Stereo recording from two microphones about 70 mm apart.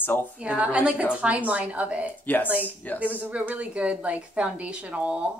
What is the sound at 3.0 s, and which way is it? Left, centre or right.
A woman's voice, right.